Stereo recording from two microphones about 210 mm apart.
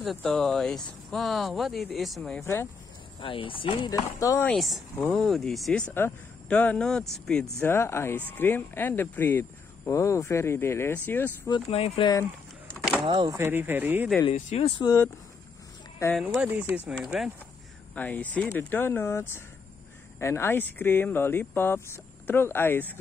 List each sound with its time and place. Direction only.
0.0 s speech: centre (ahead or behind)
2.4 s speech: 15° left (ahead or behind)
3.2 s speech: 25° left (ahead or behind)
11.5 s speech: 30° left (ahead or behind)
13.0 s speech: 20° right (ahead or behind)
14.2 s speech: 30° left (ahead or behind)
16.2 s speech: 5° right (ahead or behind)